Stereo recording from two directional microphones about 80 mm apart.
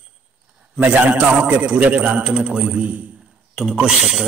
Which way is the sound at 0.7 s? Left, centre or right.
Right.